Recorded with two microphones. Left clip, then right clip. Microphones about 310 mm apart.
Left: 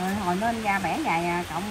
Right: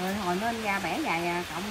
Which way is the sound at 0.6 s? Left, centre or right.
Centre.